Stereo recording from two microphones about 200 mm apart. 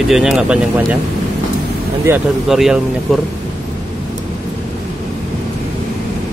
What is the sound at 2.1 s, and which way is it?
Speech, 10° right (ahead or behind).